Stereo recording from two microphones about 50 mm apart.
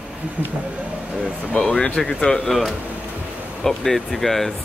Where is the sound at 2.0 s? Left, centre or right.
Centre.